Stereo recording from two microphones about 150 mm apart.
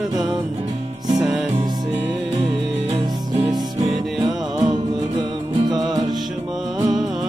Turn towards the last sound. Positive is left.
turn(degrees=-30)  # may be behind; listen again after turning